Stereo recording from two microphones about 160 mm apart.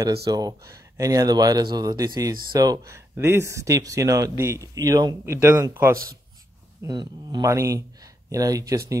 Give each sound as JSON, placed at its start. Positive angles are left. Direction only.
{"t": 0.3, "sound": "speech", "side_deg": -25}